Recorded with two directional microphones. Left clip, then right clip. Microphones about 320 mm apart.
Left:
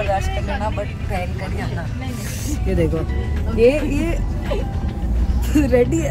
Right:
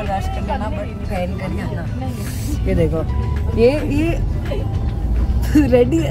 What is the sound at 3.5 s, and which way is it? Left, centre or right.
Speech, right.